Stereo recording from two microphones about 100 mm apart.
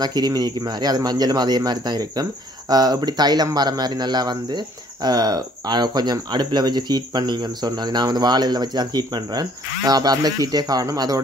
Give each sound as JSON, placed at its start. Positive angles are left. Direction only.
{"t": 0.0, "sound": "speech", "side_deg": -45}